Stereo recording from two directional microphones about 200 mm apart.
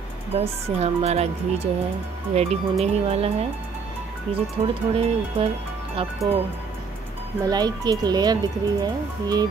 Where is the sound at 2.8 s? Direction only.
30° right (ahead or behind).